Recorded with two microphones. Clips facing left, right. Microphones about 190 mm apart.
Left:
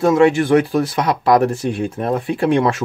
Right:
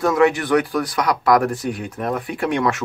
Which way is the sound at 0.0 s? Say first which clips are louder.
Left 4 dB; 25° left (ahead or behind).